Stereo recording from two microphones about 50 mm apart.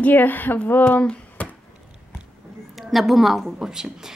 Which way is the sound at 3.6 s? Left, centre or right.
Centre.